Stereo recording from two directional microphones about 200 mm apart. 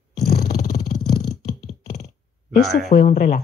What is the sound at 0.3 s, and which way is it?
Roar, 50° left (ahead or behind).